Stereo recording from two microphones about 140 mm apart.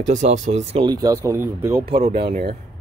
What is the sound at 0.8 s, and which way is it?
Speech, 30° right (ahead or behind).